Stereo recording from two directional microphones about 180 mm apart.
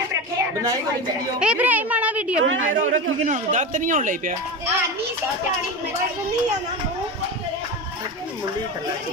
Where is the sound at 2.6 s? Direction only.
45° right (ahead or behind).